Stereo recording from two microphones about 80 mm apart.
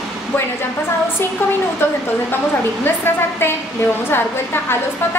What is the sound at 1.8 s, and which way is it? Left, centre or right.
A woman's voice, left.